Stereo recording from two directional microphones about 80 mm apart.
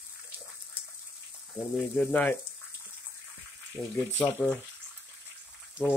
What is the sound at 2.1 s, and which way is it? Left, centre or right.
Speech, left.